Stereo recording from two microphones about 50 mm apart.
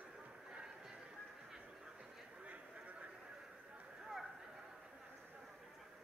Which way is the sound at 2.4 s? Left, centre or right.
Right.